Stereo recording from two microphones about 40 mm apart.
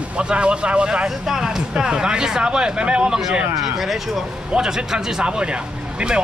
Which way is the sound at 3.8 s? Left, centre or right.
Centre.